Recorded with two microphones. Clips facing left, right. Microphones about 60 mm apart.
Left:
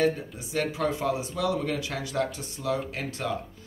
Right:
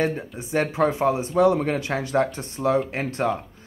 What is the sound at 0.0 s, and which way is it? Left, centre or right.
A man's voice, right.